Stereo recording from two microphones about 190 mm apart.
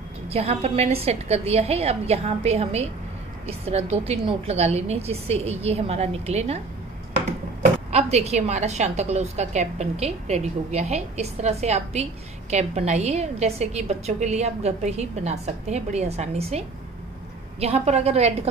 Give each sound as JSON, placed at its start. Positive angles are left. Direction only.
{"t": 0.3, "sound": "a woman's voice", "side_deg": -30}
{"t": 7.9, "sound": "a woman's voice", "side_deg": -35}